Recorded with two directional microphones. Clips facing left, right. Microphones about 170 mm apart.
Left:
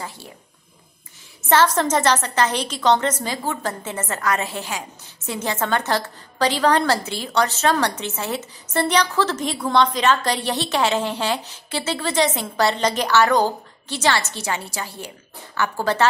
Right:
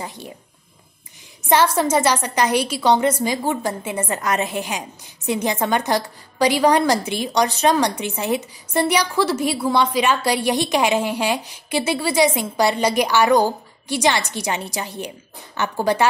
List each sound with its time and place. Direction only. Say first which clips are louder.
0.0 s speech: right 2 dB; 20° right (ahead or behind)
1.5 s a woman's voice: right 1 dB; 10° right (ahead or behind)